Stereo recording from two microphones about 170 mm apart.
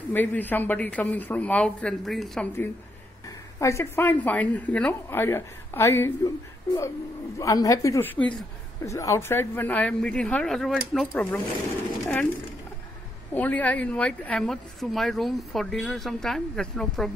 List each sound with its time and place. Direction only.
0.1 s a woman's voice: 10° left (ahead or behind)
3.5 s a woman's voice: 15° left (ahead or behind)
13.3 s a woman's voice: 10° left (ahead or behind)